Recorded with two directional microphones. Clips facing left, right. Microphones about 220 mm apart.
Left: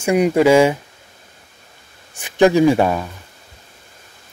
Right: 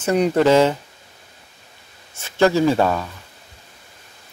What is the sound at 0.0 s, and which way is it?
Speech, 10° left (ahead or behind).